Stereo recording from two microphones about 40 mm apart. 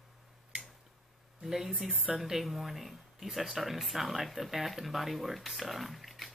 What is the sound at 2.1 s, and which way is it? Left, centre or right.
Speech, centre.